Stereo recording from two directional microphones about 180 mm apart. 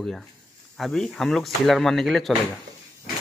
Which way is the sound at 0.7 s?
Centre (ahead or behind).